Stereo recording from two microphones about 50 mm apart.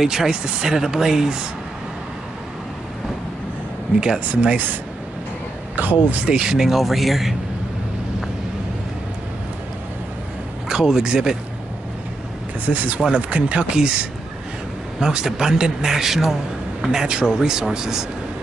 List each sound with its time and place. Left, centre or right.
0.0 s speech: centre
4.2 s speech: right
5.8 s speech: right
6.2 s speech: centre
10.7 s speech: centre
12.6 s speech: right; by 18.0 s centre